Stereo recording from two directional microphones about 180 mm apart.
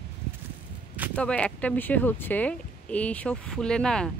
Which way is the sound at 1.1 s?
5° left (ahead or behind).